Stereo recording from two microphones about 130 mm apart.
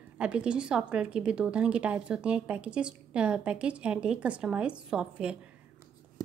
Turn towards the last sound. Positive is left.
turn(degrees=-5)  # may be behind; listen again after turning